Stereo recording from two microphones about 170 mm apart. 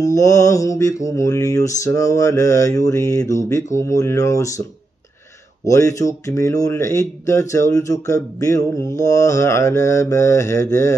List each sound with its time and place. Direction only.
0.0 s mantra: 20° left (ahead or behind)
5.7 s mantra: 20° left (ahead or behind)